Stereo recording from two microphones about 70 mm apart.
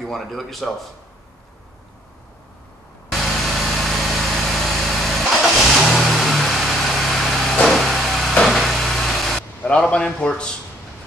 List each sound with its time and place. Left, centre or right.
0.0 s speech: centre
3.1 s vehicle: centre
9.6 s a man's voice: centre